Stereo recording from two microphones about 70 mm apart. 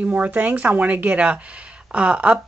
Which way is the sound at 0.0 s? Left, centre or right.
Right.